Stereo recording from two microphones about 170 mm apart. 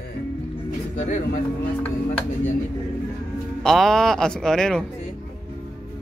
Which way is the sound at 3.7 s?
Centre (ahead or behind).